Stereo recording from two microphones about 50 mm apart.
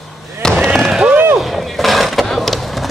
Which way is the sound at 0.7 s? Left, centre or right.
Centre.